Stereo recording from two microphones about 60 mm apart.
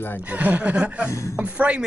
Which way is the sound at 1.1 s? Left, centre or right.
Left.